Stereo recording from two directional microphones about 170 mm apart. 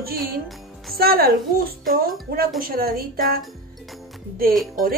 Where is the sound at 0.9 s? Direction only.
60° right (ahead or behind).